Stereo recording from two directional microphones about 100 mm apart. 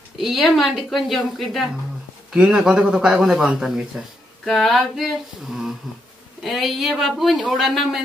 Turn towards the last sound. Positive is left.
turn(degrees=0)  # may be behind; listen again after turning